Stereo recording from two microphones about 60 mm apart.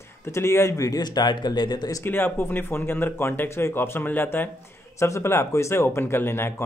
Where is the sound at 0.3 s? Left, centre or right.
Left.